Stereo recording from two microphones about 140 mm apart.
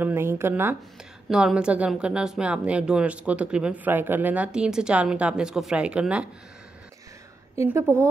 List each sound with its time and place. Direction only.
0.0 s speech: 15° right (ahead or behind)
1.3 s speech: 5° right (ahead or behind)
7.5 s a woman's voice: 20° right (ahead or behind)